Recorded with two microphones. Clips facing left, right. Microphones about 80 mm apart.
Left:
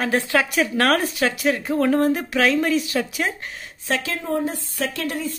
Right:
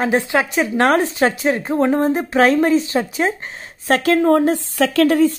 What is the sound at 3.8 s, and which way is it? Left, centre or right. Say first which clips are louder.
A woman's voice: right 11 dB; right.